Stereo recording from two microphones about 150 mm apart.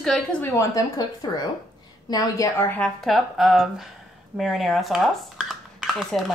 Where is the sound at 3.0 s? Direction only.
Centre (ahead or behind).